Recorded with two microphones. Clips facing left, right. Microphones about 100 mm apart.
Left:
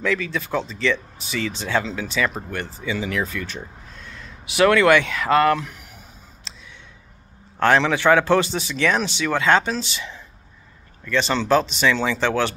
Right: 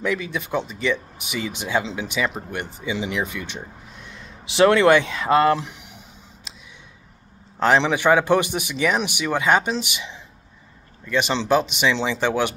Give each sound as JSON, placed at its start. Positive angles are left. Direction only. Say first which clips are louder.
{"t": 0.0, "sound": "speech", "louder": "left 1 dB", "side_deg": -20}
{"t": 6.5, "sound": "a sound", "louder": "left 1 dB", "side_deg": -15}
{"t": 7.5, "sound": "a man's voice", "louder": "left 1 dB", "side_deg": -20}